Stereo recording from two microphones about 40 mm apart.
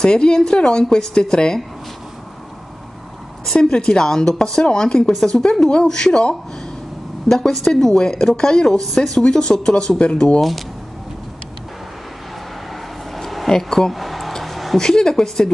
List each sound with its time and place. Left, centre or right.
0.0 s a woman's voice: centre
3.7 s a woman's voice: left
7.2 s speech: centre
9.3 s a woman's voice: centre
13.1 s a sound: centre
13.5 s speech: centre
13.9 s a sound: centre
14.8 s speech: centre